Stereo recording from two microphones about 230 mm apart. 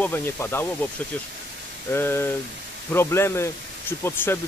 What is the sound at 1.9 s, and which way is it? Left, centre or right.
Speech, centre.